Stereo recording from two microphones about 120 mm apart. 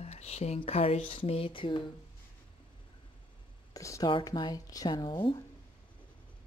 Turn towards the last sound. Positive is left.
turn(degrees=35)  # may be behind; listen again after turning